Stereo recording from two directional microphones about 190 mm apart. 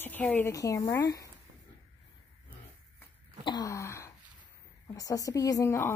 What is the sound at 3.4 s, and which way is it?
Wail, 20° left (ahead or behind).